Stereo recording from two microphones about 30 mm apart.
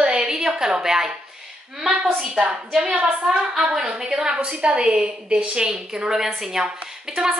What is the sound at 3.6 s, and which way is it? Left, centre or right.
Speech, right.